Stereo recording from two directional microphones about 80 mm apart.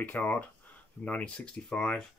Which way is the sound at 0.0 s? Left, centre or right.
Centre.